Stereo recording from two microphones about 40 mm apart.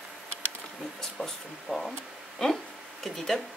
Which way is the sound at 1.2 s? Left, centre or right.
Centre.